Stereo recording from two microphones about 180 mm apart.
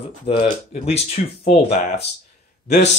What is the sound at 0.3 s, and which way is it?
Speech, 35° left (ahead or behind).